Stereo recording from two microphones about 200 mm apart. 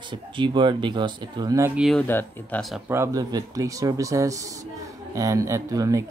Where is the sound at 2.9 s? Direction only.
15° right (ahead or behind).